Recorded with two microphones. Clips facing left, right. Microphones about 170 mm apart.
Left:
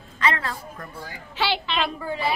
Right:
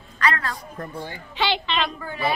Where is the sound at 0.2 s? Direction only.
20° left (ahead or behind).